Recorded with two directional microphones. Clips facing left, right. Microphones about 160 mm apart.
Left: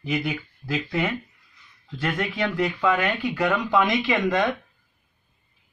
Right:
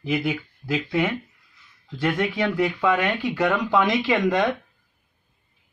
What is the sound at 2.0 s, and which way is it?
Speech, centre (ahead or behind).